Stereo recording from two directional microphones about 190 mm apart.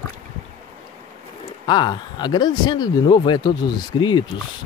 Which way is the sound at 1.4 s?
25° left (ahead or behind).